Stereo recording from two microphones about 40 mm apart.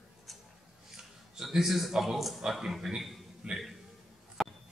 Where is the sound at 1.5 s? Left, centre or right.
Centre.